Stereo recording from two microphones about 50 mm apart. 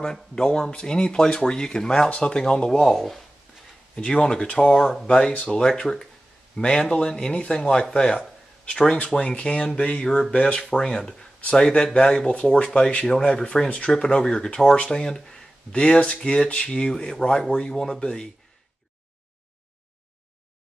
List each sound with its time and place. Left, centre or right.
0.0 s speech: centre
3.9 s speech: centre
15.7 s speech: centre